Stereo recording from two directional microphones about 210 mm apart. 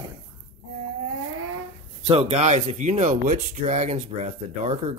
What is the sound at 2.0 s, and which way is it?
Speech, 25° right (ahead or behind).